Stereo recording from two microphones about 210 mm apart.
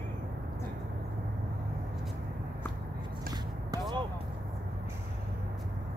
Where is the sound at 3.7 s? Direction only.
20° right (ahead or behind).